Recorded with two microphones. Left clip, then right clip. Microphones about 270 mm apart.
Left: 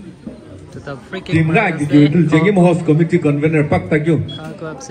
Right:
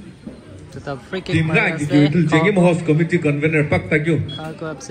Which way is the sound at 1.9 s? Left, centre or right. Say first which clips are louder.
Left 6 dB; centre.